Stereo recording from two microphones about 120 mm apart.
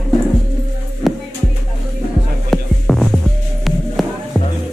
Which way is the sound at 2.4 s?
Centre (ahead or behind).